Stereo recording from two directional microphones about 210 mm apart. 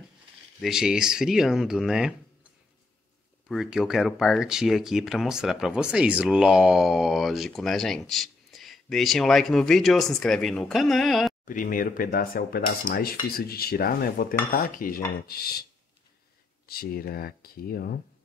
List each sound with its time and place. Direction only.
0.6 s speech: centre (ahead or behind)
3.4 s speech: centre (ahead or behind)
11.4 s speech: 40° left (ahead or behind)
16.6 s speech: 45° left (ahead or behind)